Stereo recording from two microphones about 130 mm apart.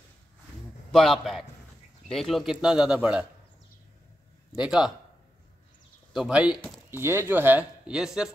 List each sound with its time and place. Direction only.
0.9 s a man's voice: 5° left (ahead or behind)
4.6 s a man's voice: 5° right (ahead or behind)
6.1 s a man's voice: 5° right (ahead or behind)
6.9 s speech: 20° right (ahead or behind)